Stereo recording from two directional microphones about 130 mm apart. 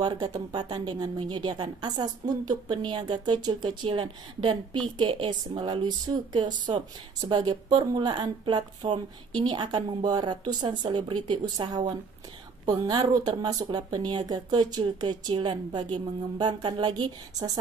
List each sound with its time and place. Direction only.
0.0 s a woman's voice: 30° right (ahead or behind)